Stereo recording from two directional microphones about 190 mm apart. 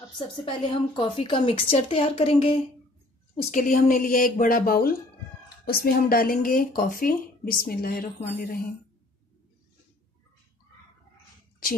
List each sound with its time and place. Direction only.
0.5 s speech: 25° left (ahead or behind)
3.3 s speech: 45° left (ahead or behind)